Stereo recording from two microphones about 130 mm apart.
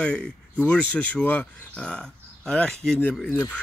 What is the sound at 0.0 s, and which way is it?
Speech, 10° left (ahead or behind).